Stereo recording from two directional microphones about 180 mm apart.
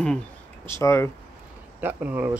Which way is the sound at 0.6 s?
15° left (ahead or behind).